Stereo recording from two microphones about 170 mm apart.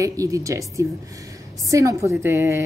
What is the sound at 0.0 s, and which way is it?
A woman's voice, 20° right (ahead or behind).